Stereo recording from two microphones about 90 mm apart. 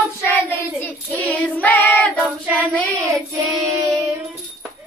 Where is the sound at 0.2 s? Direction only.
20° left (ahead or behind).